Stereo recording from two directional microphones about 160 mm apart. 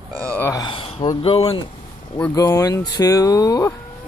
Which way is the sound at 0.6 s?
30° left (ahead or behind).